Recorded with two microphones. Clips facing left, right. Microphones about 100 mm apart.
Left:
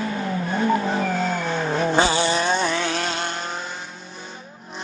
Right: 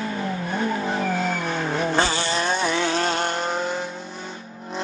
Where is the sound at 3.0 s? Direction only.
45° right (ahead or behind).